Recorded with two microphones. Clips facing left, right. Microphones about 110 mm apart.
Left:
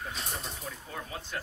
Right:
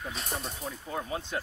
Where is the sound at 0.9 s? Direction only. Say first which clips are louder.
Right 8 dB; 25° right (ahead or behind).